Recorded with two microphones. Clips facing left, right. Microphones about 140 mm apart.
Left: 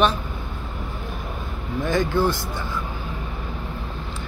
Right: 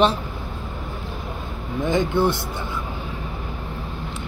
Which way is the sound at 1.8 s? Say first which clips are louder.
Right 1 dB; 20° right (ahead or behind).